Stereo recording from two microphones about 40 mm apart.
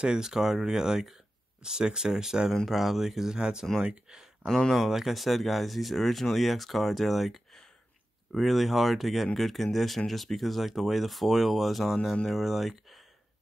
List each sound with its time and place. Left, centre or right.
0.0 s speech: centre
4.7 s speech: centre